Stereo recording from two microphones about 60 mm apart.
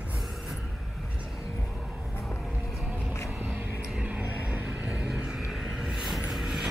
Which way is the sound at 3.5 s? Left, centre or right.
Right.